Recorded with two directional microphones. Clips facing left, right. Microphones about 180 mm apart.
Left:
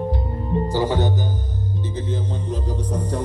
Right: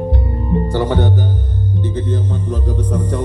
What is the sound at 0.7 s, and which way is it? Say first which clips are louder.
Speech: right 3 dB; 60° right (ahead or behind).